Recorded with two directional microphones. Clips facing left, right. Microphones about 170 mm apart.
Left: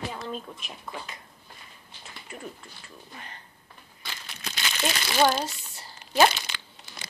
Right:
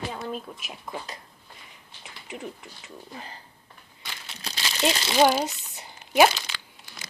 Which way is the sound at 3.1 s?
30° right (ahead or behind).